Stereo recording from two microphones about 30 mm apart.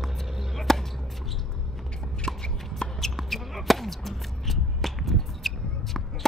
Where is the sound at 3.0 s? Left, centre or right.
Centre.